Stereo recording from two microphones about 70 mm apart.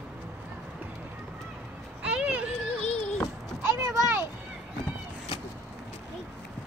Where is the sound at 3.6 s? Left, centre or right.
Right.